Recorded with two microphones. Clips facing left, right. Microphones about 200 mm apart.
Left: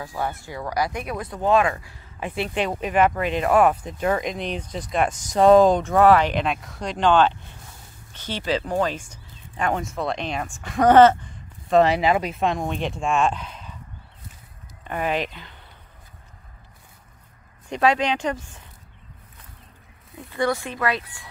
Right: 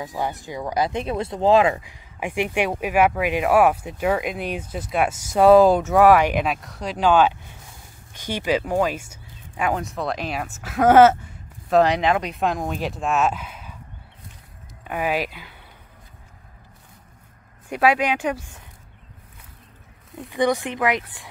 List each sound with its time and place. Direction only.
0.0 s speech: 15° right (ahead or behind)
14.9 s speech: 5° right (ahead or behind)
17.6 s speech: 10° right (ahead or behind)
20.2 s speech: 15° right (ahead or behind)